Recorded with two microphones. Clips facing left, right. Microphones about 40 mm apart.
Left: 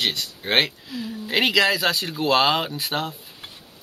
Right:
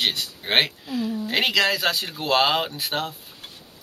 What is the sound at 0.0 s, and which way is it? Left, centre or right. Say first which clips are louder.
Speech: even; centre.